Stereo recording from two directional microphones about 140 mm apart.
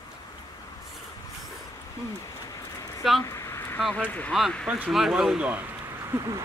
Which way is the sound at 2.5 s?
25° left (ahead or behind).